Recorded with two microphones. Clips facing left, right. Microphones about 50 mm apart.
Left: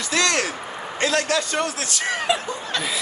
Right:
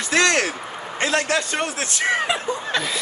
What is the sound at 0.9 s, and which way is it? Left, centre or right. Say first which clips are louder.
A man's voice: even; right.